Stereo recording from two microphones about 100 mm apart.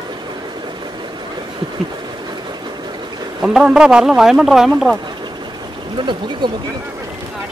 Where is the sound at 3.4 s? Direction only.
5° right (ahead or behind).